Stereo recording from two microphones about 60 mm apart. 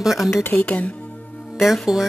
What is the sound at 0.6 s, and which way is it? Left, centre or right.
Speech, left.